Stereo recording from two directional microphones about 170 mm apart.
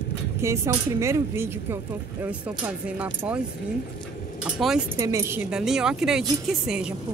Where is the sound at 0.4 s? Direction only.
15° right (ahead or behind).